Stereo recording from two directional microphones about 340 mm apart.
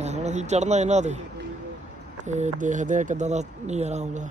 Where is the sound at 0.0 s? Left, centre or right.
Centre.